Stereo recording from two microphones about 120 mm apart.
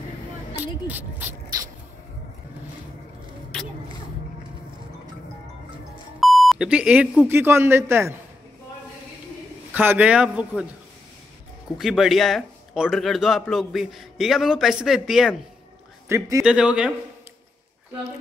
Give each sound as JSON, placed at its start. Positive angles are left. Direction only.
{"t": 0.6, "sound": "speech", "side_deg": -15}
{"t": 6.1, "sound": "beep", "side_deg": 0}
{"t": 7.2, "sound": "a man's voice", "side_deg": -20}
{"t": 9.8, "sound": "a man's voice", "side_deg": -10}
{"t": 11.8, "sound": "a man's voice", "side_deg": -5}
{"t": 16.1, "sound": "a man's voice", "side_deg": -25}
{"t": 16.4, "sound": "a man's voice", "side_deg": -10}